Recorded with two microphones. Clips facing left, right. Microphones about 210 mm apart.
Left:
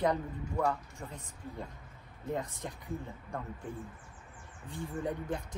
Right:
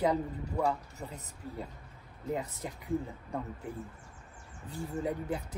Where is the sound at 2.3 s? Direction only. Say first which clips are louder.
Right 1 dB; 10° right (ahead or behind).